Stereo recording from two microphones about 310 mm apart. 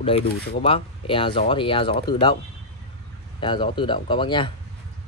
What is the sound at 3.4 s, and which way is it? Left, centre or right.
Speech, centre.